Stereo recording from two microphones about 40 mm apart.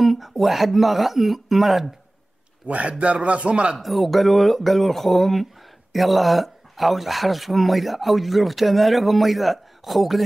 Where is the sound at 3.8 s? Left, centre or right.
Centre.